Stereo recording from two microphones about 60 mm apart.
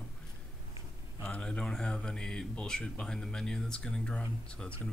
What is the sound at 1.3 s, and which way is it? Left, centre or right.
Speech, centre.